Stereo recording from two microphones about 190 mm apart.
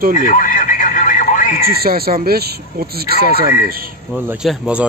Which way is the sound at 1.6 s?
55° right (ahead or behind).